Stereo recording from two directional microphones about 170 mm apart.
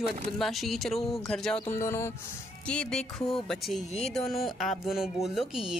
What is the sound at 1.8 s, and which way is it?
Speech, 15° left (ahead or behind).